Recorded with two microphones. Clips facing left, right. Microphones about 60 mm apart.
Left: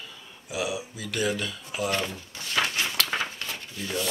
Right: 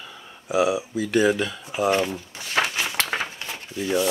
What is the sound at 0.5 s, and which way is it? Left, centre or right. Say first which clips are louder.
Speech: right 9 dB; right.